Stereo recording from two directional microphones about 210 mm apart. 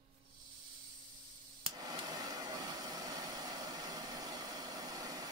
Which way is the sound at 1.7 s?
15° right (ahead or behind).